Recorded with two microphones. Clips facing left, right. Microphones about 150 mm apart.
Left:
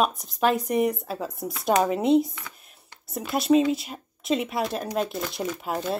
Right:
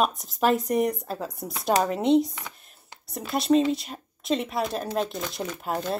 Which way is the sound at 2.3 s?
20° right (ahead or behind).